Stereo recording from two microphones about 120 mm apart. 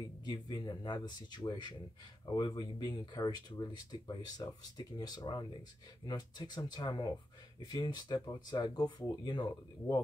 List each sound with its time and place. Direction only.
0.2 s speech: 35° left (ahead or behind)